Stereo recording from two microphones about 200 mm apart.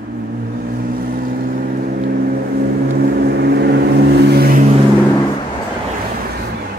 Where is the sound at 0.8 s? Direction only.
45° right (ahead or behind).